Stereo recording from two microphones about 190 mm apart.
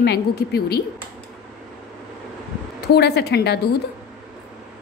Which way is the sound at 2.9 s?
60° left (ahead or behind).